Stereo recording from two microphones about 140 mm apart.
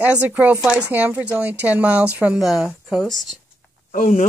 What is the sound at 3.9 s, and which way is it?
Speech, 65° left (ahead or behind).